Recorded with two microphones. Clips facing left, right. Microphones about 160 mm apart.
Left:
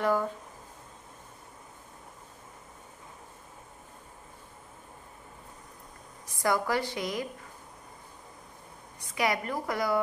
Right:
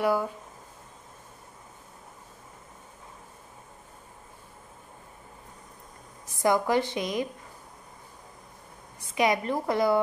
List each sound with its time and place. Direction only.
0.0 s speech: 10° right (ahead or behind)
6.4 s a woman's voice: 20° right (ahead or behind)
9.1 s a woman's voice: 20° right (ahead or behind)